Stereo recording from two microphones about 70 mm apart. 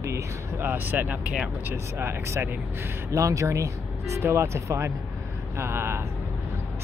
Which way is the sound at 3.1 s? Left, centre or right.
Right.